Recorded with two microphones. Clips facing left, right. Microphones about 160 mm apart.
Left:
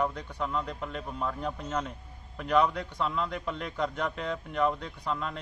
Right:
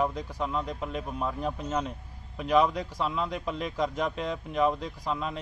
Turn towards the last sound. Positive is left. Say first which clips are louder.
# right 2 dB
turn(degrees=-5)  # may be behind; listen again after turning